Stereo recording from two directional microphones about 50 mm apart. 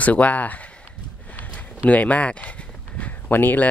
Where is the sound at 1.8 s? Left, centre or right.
Left.